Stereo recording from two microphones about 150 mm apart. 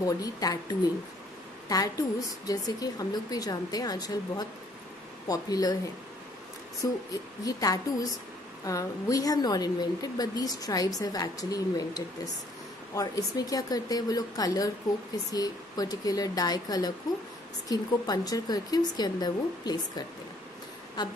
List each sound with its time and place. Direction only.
0.0 s a woman's voice: 25° left (ahead or behind)
6.8 s a woman's voice: 20° left (ahead or behind)